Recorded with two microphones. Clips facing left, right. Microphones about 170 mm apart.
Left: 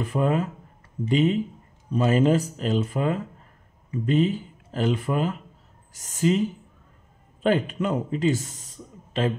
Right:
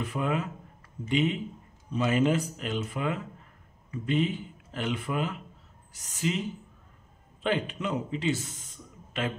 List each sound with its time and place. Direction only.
0.0 s speech: 40° left (ahead or behind)
7.4 s speech: 45° left (ahead or behind)